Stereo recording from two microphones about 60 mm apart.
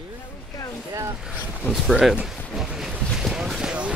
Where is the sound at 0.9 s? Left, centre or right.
Right.